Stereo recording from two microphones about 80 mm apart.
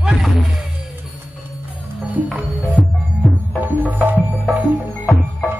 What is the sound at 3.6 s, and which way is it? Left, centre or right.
Music, right.